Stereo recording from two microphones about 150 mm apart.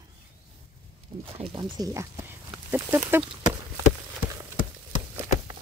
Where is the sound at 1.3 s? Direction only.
35° right (ahead or behind); by 3.2 s 15° right (ahead or behind).